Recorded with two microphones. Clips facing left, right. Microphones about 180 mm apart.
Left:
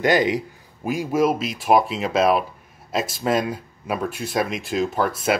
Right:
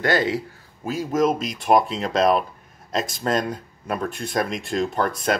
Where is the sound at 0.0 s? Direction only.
15° left (ahead or behind).